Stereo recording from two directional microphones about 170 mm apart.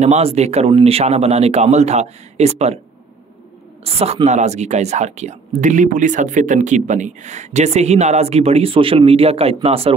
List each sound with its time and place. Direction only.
0.0 s speech: 40° right (ahead or behind)
3.8 s speech: 35° right (ahead or behind)